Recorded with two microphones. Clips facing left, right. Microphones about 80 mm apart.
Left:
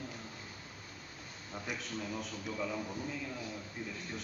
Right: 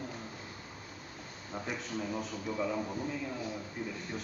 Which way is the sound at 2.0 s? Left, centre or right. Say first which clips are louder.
Right 4 dB; centre.